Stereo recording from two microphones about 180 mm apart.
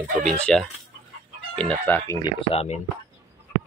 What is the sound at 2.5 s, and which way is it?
Speech, 35° left (ahead or behind).